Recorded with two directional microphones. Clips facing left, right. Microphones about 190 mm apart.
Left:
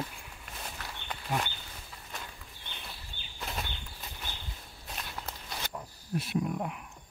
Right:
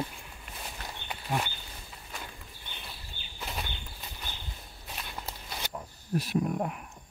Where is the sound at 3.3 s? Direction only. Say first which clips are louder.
Even; centre (ahead or behind).